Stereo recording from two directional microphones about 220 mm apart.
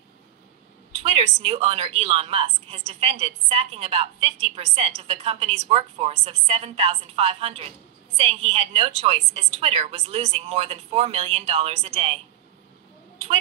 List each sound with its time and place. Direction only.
0.9 s a woman's voice: 25° right (ahead or behind)